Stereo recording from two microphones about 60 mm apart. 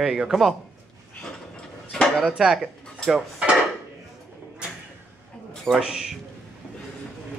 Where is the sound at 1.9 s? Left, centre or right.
Centre.